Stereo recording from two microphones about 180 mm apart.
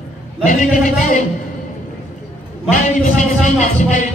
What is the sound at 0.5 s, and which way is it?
Speech, 50° left (ahead or behind).